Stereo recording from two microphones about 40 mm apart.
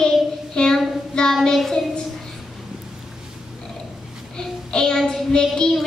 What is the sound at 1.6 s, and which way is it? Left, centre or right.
Child singing, centre.